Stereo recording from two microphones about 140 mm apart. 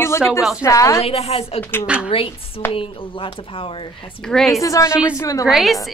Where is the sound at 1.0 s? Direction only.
45° left (ahead or behind).